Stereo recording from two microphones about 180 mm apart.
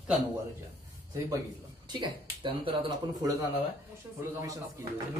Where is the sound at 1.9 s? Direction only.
25° right (ahead or behind).